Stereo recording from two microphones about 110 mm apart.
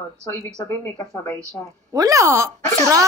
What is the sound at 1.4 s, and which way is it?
A woman's voice, 30° right (ahead or behind).